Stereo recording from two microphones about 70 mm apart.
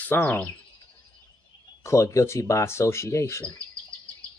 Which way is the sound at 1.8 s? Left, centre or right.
Left.